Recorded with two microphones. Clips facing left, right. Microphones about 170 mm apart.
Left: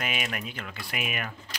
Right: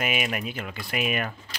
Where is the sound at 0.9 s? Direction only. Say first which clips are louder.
Right 6 dB; 35° right (ahead or behind).